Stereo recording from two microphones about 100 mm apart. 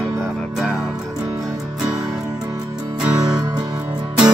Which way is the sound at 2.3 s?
40° right (ahead or behind).